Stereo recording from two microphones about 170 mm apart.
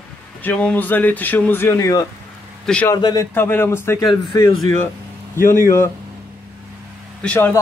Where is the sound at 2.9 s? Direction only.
20° left (ahead or behind).